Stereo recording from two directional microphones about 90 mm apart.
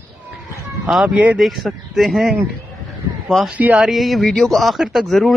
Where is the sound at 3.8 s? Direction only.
Centre (ahead or behind).